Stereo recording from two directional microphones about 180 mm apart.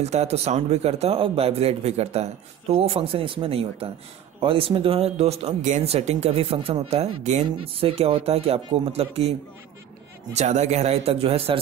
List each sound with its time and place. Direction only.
0.0 s speech: 35° right (ahead or behind)
10.3 s speech: 40° right (ahead or behind)